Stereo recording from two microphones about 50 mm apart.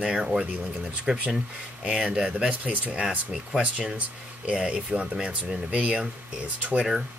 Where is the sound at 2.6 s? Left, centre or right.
Right.